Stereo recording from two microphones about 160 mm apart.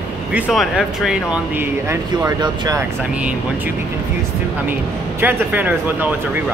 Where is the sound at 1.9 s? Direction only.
20° right (ahead or behind).